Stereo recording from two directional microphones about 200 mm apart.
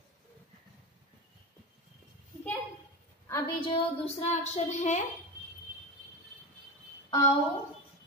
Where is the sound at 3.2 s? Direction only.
15° left (ahead or behind).